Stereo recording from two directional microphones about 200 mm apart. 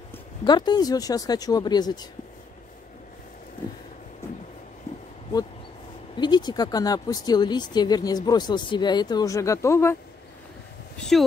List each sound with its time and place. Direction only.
0.4 s speech: 20° left (ahead or behind)
6.1 s speech: 20° left (ahead or behind)
11.0 s speech: centre (ahead or behind)